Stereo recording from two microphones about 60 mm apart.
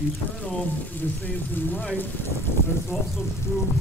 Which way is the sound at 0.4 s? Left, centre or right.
Left.